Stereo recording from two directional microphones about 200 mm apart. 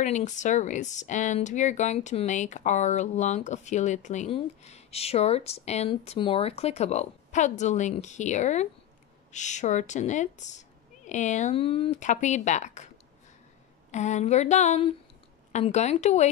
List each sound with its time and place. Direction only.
0.0 s speech: 35° left (ahead or behind)
13.9 s speech: 35° left (ahead or behind)